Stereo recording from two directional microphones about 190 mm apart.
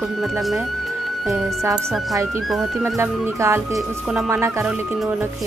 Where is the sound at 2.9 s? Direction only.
15° right (ahead or behind).